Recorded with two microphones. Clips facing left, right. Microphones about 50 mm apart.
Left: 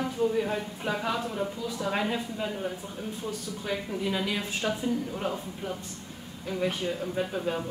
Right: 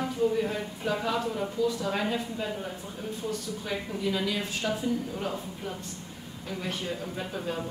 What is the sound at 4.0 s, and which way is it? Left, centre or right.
A woman's voice, centre.